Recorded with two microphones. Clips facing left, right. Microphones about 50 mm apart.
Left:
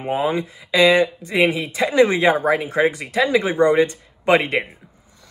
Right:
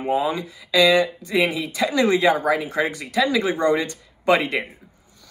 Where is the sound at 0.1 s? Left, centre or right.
Left.